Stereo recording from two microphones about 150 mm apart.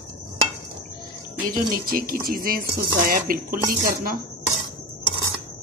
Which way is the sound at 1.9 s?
75° right (ahead or behind).